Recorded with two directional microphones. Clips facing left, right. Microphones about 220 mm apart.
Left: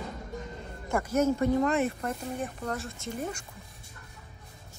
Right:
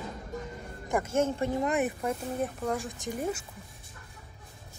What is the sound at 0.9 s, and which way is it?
Speech, 25° right (ahead or behind).